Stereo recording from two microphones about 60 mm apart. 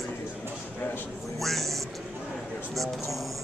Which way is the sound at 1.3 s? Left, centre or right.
Centre.